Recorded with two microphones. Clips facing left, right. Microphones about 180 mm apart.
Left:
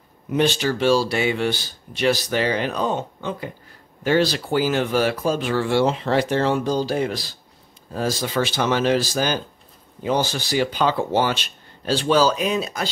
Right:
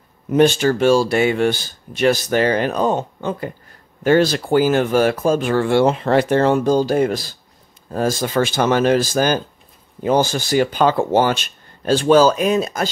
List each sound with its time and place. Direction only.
0.3 s speech: 50° right (ahead or behind)